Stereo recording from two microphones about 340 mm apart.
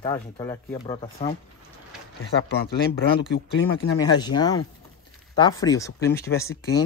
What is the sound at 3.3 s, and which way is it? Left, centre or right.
Speech, left.